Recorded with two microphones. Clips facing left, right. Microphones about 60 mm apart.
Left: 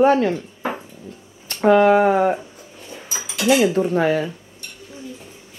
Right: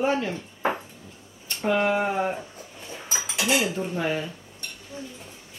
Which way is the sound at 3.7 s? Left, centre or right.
Left.